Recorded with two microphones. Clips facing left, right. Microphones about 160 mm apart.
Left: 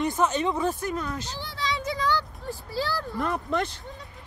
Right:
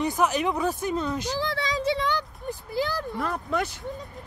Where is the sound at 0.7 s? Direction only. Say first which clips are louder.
Right 3 dB; 20° right (ahead or behind).